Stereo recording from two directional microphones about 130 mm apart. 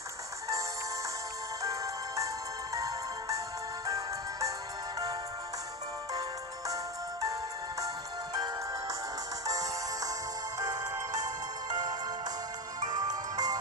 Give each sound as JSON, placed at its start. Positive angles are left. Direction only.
{"t": 1.6, "sound": "music", "side_deg": -25}
{"t": 6.7, "sound": "music", "side_deg": -25}
{"t": 9.5, "sound": "music", "side_deg": -25}